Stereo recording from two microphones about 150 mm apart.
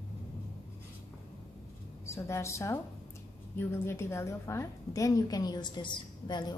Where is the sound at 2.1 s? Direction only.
20° left (ahead or behind).